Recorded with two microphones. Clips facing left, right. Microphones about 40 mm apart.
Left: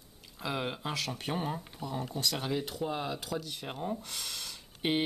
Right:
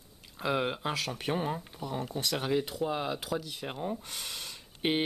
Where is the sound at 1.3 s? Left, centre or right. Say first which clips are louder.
Right 2 dB; centre.